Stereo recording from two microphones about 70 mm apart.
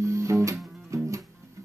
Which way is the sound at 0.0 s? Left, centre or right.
Right.